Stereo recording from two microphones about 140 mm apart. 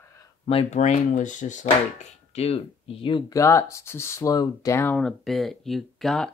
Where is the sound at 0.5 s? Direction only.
45° left (ahead or behind).